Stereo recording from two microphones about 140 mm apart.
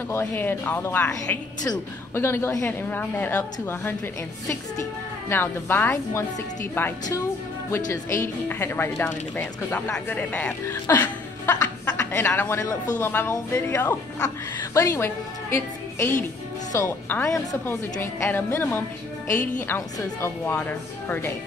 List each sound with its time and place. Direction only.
0.1 s speech: 15° left (ahead or behind)
5.3 s speech: 15° left (ahead or behind)
7.9 s speech: 15° left (ahead or behind)